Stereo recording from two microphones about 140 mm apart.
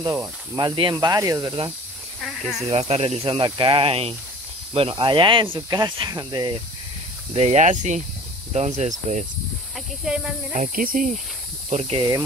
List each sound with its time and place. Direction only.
0.6 s speech: 35° right (ahead or behind)
2.1 s speech: centre (ahead or behind)
2.7 s speech: 45° right (ahead or behind)
3.3 s speech: 35° right (ahead or behind)
7.3 s speech: 50° right (ahead or behind)
10.0 s speech: 5° right (ahead or behind)
10.5 s speech: 75° right (ahead or behind)
11.7 s speech: 60° right (ahead or behind)